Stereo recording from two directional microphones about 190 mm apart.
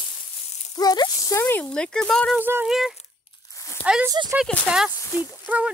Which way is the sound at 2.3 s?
10° right (ahead or behind).